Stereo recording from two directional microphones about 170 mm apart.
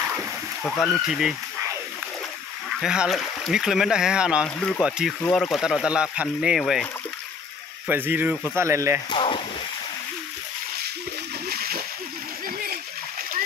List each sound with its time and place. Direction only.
0.7 s speech: centre (ahead or behind)
2.8 s speech: 5° right (ahead or behind)
7.9 s speech: 10° right (ahead or behind)
9.1 s speech: 30° left (ahead or behind)
11.4 s splash: 65° right (ahead or behind)